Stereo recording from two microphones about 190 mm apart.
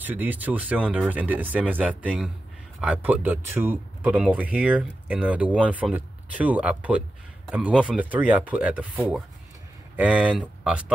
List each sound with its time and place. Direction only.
0.0 s speech: 10° right (ahead or behind)